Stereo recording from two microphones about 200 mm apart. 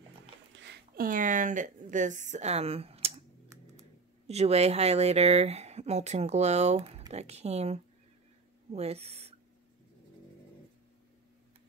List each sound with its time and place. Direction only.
0.6 s a sound: 60° right (ahead or behind)
1.0 s speech: 40° right (ahead or behind)
4.3 s speech: 30° right (ahead or behind)